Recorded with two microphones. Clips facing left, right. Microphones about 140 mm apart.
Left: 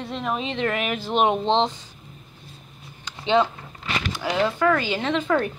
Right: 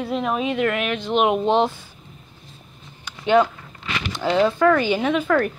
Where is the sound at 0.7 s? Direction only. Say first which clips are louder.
Right 3 dB; centre (ahead or behind).